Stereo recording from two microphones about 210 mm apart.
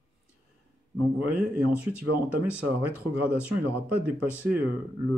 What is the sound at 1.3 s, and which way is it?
Speech, 5° right (ahead or behind).